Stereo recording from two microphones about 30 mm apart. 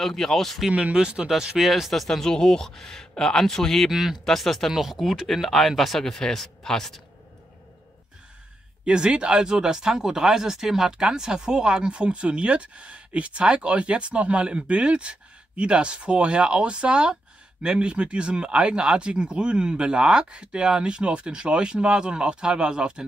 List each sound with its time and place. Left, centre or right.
0.0 s speech: centre
0.9 s speech: right
1.6 s speech: centre
2.0 s speech: centre
2.2 s speech: centre
3.9 s speech: centre
4.3 s speech: centre
4.7 s speech: centre
8.8 s speech: right